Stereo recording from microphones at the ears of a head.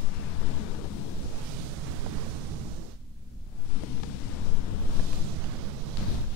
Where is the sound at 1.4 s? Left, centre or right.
Right.